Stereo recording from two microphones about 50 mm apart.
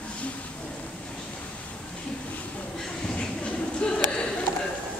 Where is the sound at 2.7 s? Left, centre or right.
Centre.